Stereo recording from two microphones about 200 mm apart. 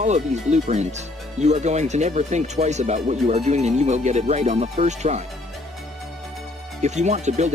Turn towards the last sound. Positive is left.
turn(degrees=-35)  # may be behind; listen again after turning